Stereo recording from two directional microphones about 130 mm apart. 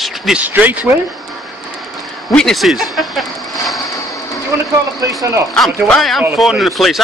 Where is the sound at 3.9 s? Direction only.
25° left (ahead or behind).